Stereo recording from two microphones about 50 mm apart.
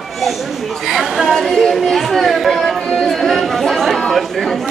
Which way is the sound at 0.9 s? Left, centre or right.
Centre.